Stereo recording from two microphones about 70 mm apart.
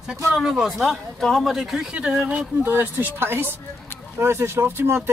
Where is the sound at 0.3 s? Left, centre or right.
Centre.